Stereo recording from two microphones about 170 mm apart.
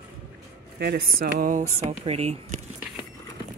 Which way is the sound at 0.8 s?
65° right (ahead or behind).